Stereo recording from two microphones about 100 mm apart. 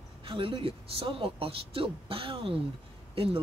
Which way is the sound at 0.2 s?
65° right (ahead or behind).